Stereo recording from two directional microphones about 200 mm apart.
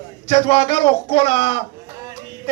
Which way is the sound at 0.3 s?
30° left (ahead or behind).